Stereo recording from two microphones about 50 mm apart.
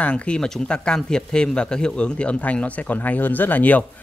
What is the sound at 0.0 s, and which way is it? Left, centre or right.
A man's voice, left.